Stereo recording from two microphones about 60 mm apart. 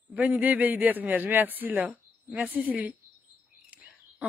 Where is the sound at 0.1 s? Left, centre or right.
Right.